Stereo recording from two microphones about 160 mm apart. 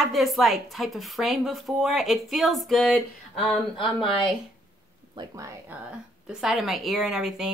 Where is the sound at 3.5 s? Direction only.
35° left (ahead or behind).